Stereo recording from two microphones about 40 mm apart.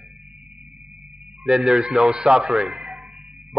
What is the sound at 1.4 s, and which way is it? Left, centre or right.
A man's voice, right.